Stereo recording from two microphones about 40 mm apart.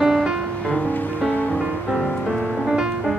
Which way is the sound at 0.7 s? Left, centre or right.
Left.